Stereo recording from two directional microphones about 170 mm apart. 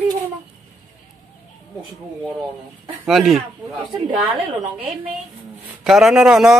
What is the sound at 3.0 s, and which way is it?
Speech, centre (ahead or behind).